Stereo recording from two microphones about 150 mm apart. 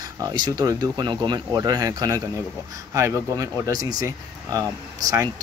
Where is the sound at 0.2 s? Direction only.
25° right (ahead or behind).